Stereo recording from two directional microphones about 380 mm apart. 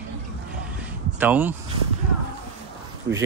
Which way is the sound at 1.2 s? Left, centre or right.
Centre.